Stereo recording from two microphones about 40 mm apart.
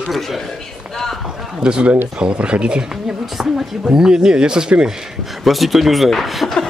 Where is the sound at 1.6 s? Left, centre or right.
Right.